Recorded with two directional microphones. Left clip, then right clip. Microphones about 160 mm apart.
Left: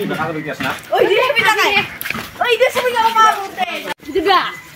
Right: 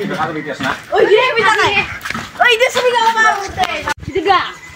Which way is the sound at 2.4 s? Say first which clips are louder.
Right 2 dB; 90° right.